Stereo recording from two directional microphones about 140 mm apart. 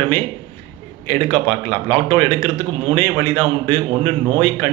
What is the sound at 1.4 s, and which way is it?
Speech, 15° left (ahead or behind).